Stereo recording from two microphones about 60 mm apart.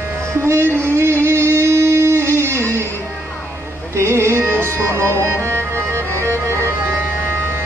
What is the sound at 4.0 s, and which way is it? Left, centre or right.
Music, right.